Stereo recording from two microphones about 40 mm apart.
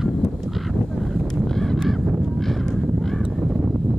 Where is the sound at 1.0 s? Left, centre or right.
Centre.